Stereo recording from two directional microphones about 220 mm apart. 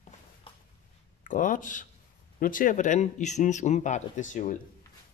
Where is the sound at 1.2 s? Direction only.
35° left (ahead or behind).